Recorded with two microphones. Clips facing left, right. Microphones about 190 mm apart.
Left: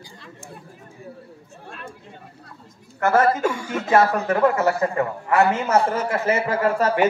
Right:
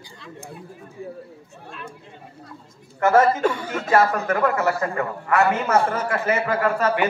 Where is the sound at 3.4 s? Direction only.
10° left (ahead or behind); by 7.1 s 35° left (ahead or behind).